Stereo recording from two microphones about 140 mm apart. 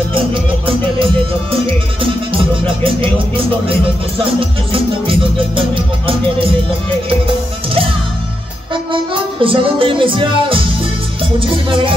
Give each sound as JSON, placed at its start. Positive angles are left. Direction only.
{"t": 0.1, "sound": "music", "side_deg": -40}
{"t": 8.9, "sound": "music", "side_deg": -40}